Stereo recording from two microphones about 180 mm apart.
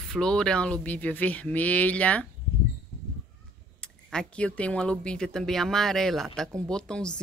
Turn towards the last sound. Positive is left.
turn(degrees=5)  # may be behind; listen again after turning